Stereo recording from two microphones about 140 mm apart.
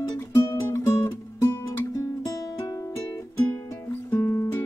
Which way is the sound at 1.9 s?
25° left (ahead or behind).